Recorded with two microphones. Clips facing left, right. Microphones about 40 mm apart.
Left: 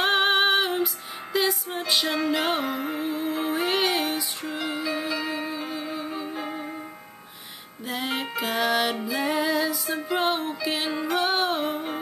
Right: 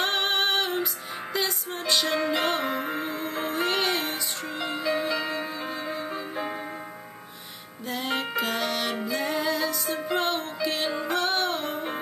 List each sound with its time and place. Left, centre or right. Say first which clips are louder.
0.0 s music: left 4 dB; centre
7.9 s music: right 1 dB; centre